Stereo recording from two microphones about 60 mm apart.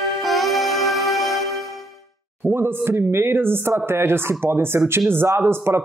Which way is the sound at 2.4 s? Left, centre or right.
Right.